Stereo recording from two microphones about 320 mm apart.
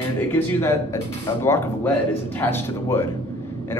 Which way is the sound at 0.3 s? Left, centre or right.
Centre.